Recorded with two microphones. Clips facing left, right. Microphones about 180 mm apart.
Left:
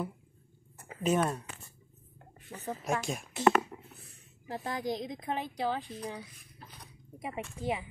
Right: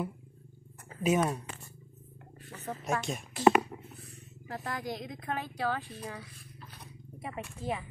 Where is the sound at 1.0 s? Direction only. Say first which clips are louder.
Right 1 dB; 5° right (ahead or behind).